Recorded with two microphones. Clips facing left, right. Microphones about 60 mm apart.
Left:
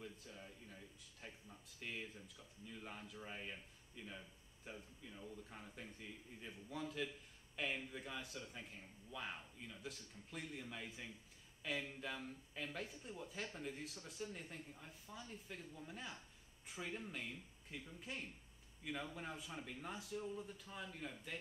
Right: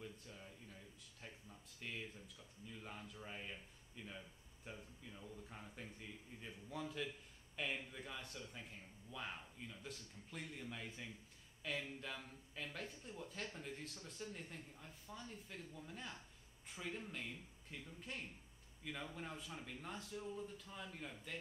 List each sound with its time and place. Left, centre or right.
0.0 s speech: centre